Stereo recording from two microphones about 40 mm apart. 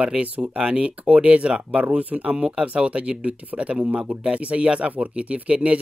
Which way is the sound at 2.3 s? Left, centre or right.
Right.